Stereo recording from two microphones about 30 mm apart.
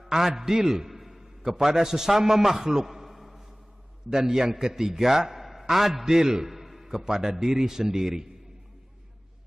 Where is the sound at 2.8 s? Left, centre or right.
Centre.